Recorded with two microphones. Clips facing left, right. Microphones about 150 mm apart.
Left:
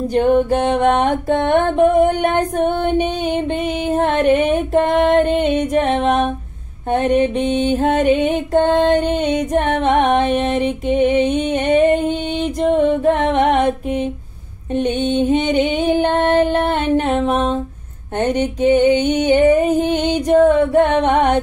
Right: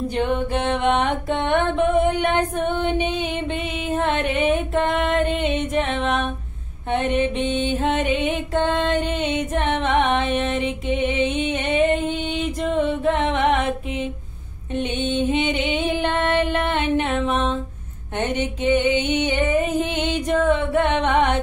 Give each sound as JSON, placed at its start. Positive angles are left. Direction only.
{"t": 0.1, "sound": "music", "side_deg": 40}
{"t": 14.8, "sound": "music", "side_deg": 40}